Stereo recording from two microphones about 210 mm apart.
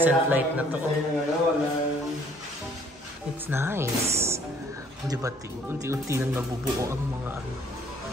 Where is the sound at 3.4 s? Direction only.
10° right (ahead or behind).